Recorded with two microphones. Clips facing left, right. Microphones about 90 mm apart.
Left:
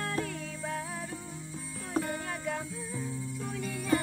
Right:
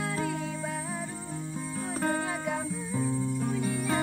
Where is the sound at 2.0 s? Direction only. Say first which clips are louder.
Right 2 dB; 40° right (ahead or behind).